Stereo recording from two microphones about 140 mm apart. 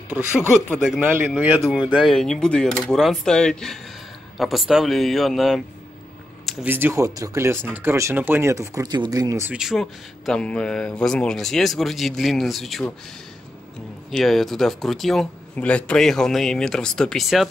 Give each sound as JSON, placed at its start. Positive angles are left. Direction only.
{"t": 0.4, "sound": "speech", "side_deg": 15}
{"t": 0.7, "sound": "speech", "side_deg": -5}
{"t": 6.6, "sound": "speech", "side_deg": -15}
{"t": 9.5, "sound": "speech", "side_deg": -5}
{"t": 14.1, "sound": "speech", "side_deg": 0}